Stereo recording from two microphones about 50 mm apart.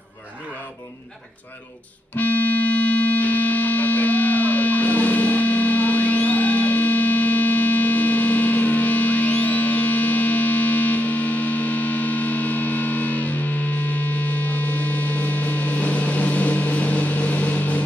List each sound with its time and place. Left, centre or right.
2.1 s music: left